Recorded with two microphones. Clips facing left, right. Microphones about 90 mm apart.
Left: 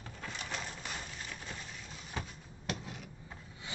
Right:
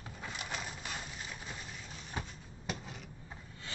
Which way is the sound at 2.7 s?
Centre (ahead or behind).